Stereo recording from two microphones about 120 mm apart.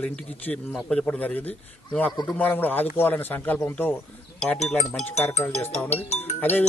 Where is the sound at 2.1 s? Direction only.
35° left (ahead or behind).